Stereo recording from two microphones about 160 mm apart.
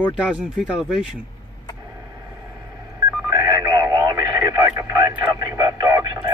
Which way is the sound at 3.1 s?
20° right (ahead or behind).